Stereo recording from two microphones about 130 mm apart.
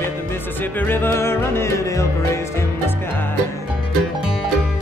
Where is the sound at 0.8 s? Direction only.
15° left (ahead or behind).